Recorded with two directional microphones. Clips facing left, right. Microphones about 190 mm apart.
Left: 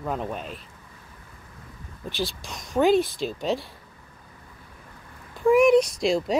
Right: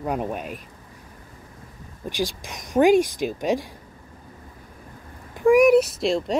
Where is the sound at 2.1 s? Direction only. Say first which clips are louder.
Right 3 dB; 15° right (ahead or behind).